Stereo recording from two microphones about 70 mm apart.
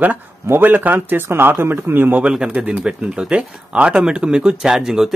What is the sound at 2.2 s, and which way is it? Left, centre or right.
Speech, centre.